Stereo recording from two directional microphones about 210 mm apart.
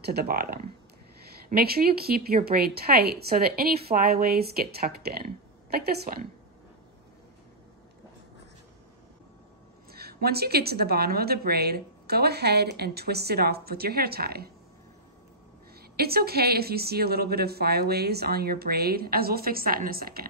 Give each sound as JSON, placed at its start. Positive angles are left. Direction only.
{"t": 0.0, "sound": "a woman's voice", "side_deg": -45}
{"t": 9.8, "sound": "a woman's voice", "side_deg": -50}
{"t": 16.0, "sound": "a woman's voice", "side_deg": -45}